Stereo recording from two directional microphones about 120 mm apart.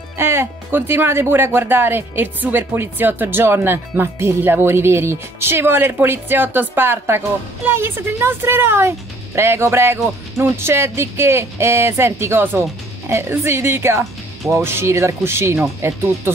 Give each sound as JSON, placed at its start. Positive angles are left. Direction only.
{"t": 0.2, "sound": "speech", "side_deg": -20}